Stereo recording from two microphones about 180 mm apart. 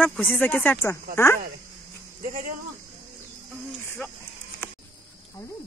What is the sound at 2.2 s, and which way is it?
Speech, 50° right (ahead or behind).